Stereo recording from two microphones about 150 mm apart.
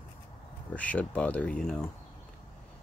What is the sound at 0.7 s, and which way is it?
Speech, 10° left (ahead or behind).